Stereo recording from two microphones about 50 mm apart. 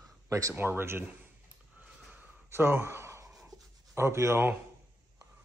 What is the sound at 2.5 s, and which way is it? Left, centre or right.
Speech, right.